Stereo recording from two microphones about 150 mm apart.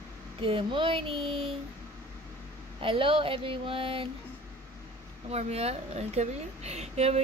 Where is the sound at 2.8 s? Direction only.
35° right (ahead or behind).